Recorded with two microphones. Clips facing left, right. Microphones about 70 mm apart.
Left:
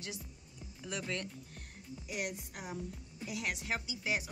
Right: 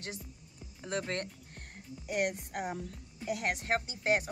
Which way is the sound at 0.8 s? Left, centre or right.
Right.